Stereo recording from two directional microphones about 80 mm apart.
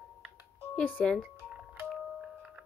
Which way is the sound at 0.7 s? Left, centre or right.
Centre.